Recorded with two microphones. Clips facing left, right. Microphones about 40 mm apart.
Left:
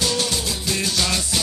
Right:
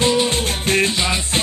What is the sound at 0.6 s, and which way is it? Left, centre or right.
Music, right.